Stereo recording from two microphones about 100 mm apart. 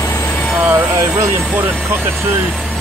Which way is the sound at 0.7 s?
20° right (ahead or behind).